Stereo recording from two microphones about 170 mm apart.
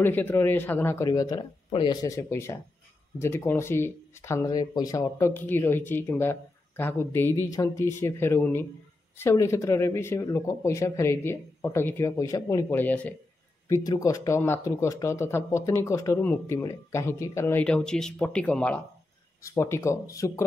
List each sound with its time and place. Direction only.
0.0 s speech: 10° left (ahead or behind)